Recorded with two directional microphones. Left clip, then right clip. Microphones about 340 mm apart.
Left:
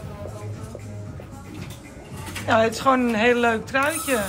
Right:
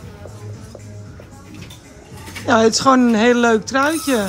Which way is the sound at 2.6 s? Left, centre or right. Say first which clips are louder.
Right 8 dB; centre.